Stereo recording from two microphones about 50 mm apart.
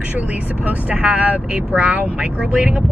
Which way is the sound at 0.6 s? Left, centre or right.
Right.